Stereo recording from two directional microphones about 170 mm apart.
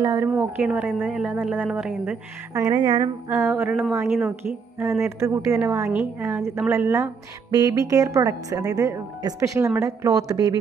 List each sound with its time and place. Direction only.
0.0 s a woman's voice: 15° right (ahead or behind)
2.5 s speech: 20° right (ahead or behind)